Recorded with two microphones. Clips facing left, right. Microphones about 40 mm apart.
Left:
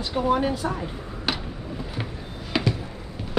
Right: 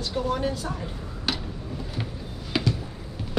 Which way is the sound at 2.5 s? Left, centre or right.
Centre.